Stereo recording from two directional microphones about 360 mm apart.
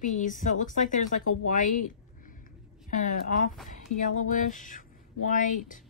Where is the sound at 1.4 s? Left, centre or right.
Left.